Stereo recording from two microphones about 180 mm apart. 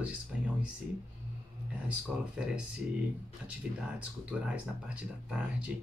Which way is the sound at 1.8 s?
5° right (ahead or behind).